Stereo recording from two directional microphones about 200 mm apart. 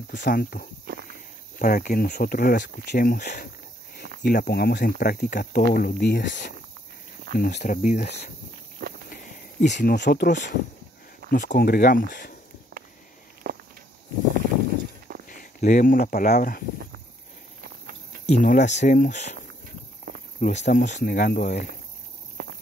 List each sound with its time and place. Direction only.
0.2 s speech: 50° left (ahead or behind)
0.8 s walk: 50° right (ahead or behind)
1.6 s speech: 45° left (ahead or behind); by 6.5 s 60° left (ahead or behind)
7.3 s speech: 45° left (ahead or behind)
9.1 s a sound: 40° left (ahead or behind)
9.9 s speech: 55° left (ahead or behind)
13.4 s walk: 45° right (ahead or behind)
15.2 s speech: 40° left (ahead or behind)
17.6 s a sound: 50° right (ahead or behind)
18.2 s speech: 40° left (ahead or behind)
20.3 s speech: 40° left (ahead or behind)
22.4 s walk: 55° right (ahead or behind)